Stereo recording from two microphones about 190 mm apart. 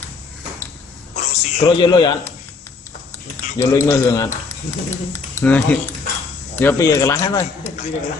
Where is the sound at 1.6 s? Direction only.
25° left (ahead or behind).